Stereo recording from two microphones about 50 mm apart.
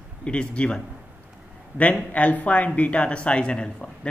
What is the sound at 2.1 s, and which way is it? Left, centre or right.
Speech, left.